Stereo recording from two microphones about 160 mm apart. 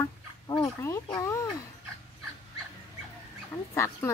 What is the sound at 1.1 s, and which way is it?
Speech, 20° left (ahead or behind).